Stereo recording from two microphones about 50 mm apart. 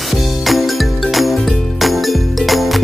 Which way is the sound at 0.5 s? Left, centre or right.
Centre.